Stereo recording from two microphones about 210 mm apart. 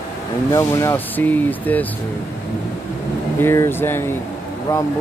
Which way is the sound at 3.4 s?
10° left (ahead or behind).